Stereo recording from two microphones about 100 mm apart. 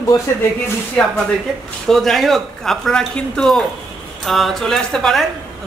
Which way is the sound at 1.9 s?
5° left (ahead or behind).